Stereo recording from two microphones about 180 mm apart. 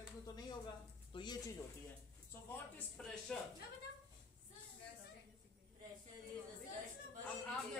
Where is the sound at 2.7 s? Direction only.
5° left (ahead or behind).